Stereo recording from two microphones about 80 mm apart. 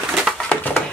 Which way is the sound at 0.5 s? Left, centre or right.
Left.